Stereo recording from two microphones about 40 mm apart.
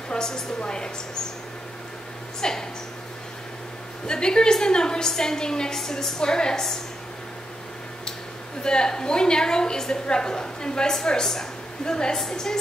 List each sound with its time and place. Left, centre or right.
0.1 s a woman's voice: centre
2.4 s a woman's voice: centre
4.1 s a woman's voice: centre
8.6 s a woman's voice: centre